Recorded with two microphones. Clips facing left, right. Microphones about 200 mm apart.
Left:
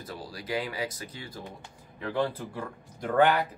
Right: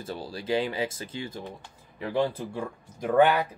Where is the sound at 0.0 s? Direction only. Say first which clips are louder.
Right 5 dB; 25° right (ahead or behind).